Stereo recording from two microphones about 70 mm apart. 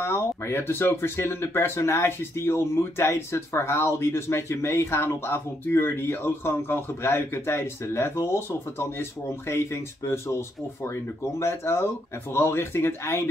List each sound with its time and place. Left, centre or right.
0.0 s speech: left
11.3 s speech: left